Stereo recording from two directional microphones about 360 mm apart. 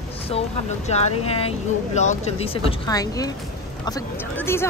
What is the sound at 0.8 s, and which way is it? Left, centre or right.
A woman's voice, centre.